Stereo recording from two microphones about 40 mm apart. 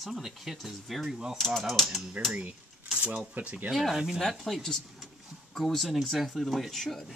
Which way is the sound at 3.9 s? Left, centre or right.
Centre.